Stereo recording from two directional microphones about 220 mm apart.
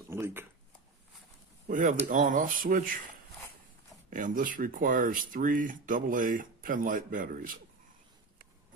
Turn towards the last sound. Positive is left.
turn(degrees=-40)  # may be behind; listen again after turning